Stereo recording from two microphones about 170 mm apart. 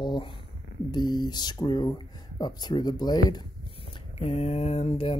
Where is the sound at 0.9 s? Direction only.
25° left (ahead or behind).